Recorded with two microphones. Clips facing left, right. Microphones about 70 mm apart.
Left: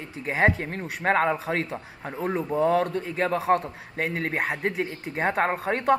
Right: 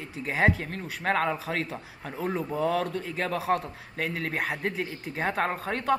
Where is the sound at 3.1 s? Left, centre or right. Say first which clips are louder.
Left 6 dB; left.